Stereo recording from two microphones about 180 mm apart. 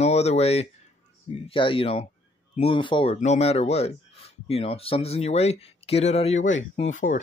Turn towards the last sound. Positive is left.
turn(degrees=45)  # may be behind; listen again after turning